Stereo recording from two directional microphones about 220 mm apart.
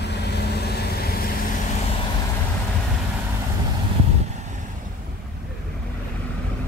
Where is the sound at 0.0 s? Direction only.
50° left (ahead or behind).